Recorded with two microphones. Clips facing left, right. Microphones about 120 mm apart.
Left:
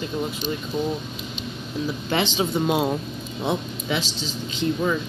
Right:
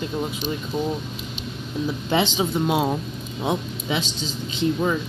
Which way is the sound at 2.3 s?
5° right (ahead or behind).